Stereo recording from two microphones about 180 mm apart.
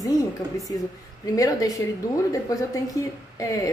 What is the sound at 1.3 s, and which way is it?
A woman's voice, 20° left (ahead or behind).